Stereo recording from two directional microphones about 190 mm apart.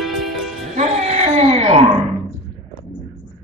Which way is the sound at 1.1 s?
35° right (ahead or behind).